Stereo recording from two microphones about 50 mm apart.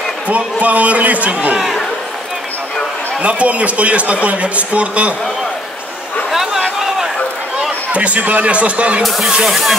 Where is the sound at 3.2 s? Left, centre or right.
Right.